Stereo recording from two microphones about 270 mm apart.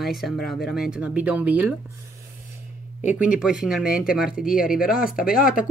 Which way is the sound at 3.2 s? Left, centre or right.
Centre.